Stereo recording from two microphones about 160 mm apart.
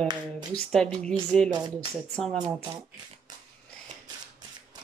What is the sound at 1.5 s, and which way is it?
Speech, 25° right (ahead or behind).